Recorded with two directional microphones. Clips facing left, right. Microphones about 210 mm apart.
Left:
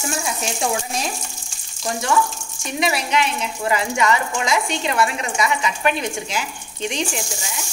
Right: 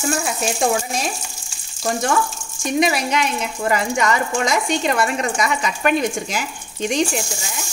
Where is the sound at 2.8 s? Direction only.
45° right (ahead or behind).